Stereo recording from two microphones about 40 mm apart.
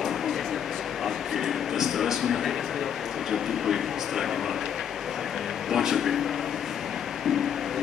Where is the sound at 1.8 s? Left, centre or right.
Centre.